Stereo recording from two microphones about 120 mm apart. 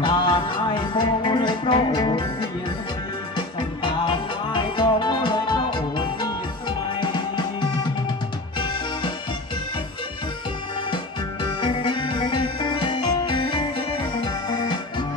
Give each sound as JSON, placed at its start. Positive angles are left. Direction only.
{"t": 0.0, "sound": "music", "side_deg": 40}
{"t": 3.3, "sound": "music", "side_deg": 45}
{"t": 11.6, "sound": "music", "side_deg": 45}